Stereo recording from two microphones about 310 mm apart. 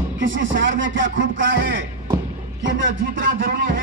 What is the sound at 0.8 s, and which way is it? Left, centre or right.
Speech, right.